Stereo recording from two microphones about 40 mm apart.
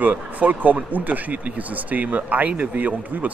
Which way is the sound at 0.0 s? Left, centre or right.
Right.